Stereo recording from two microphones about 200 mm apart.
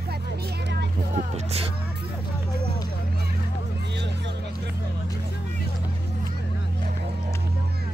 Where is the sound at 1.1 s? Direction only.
35° right (ahead or behind).